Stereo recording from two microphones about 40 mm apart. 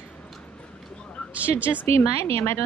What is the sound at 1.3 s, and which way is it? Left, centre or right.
Speech, right.